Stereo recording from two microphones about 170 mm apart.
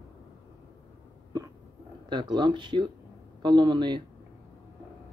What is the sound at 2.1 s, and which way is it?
Speech, 25° right (ahead or behind).